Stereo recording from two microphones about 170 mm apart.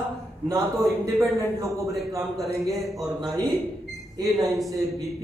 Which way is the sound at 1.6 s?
20° right (ahead or behind).